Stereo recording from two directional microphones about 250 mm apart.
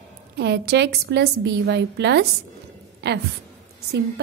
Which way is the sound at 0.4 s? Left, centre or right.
Right.